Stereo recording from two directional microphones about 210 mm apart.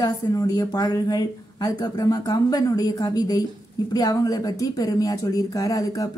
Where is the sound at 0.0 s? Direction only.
15° left (ahead or behind).